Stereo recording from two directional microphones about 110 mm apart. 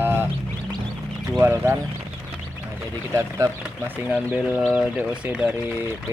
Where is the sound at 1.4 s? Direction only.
25° right (ahead or behind).